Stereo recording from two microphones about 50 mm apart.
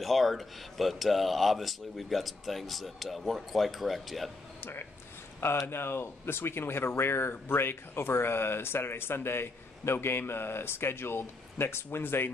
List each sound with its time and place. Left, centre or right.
0.0 s speech: centre
4.6 s speech: left